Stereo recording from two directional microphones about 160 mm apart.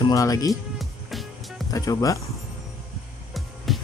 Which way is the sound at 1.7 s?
20° left (ahead or behind).